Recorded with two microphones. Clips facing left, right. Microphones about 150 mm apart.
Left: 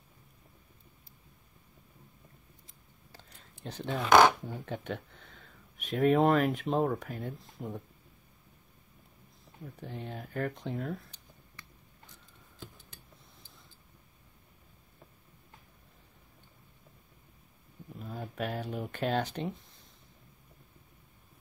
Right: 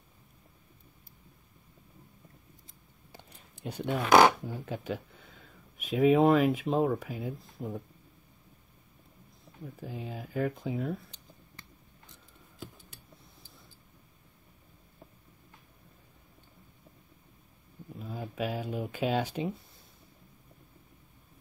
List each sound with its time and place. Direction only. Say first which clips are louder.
3.1 s a sound: right 3 dB; 15° right (ahead or behind)
4.5 s speech: right 2 dB; 5° right (ahead or behind)
9.8 s speech: right 1 dB; 5° right (ahead or behind)
17.9 s speech: right 2 dB; centre (ahead or behind)